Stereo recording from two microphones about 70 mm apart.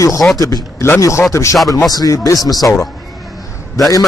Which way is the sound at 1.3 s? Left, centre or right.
Left.